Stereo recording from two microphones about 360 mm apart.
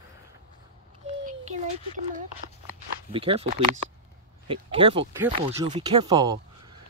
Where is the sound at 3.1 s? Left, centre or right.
Centre.